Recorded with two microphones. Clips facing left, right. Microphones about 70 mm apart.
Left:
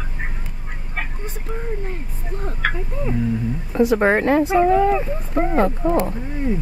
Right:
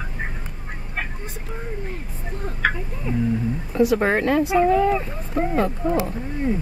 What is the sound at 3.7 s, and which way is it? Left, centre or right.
Speech, left.